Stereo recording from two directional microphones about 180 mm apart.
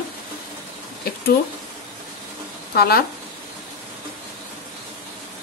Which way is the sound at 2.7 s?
60° left (ahead or behind).